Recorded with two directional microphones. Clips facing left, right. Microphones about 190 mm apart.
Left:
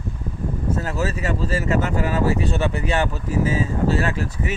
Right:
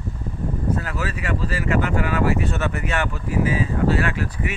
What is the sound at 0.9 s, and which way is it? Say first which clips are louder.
Speech: left 3 dB; 40° left (ahead or behind).